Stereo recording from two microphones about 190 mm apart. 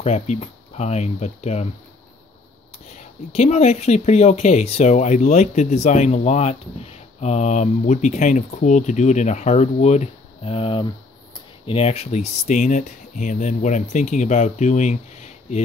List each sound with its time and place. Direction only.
0.0 s speech: 35° left (ahead or behind)
3.3 s speech: 35° left (ahead or behind)